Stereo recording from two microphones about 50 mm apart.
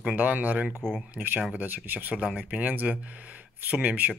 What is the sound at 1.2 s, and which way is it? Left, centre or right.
Speech, centre.